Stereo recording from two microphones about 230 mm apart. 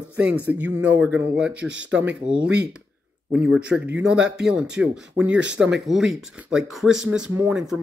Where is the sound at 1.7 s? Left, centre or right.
Right.